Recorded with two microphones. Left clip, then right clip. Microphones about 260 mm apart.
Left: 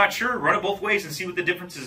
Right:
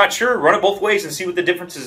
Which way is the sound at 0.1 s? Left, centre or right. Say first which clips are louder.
Right 7 dB; centre.